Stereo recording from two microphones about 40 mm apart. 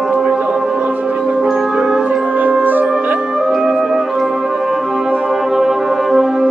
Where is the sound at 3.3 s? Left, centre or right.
Centre.